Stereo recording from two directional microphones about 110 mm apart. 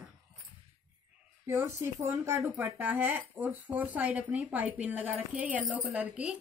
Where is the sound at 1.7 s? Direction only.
25° right (ahead or behind).